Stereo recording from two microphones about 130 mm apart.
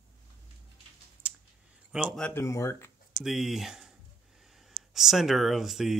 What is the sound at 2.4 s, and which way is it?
Speech, 20° left (ahead or behind).